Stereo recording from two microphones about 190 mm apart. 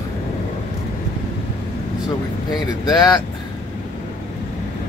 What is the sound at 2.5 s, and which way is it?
Speech, 20° left (ahead or behind).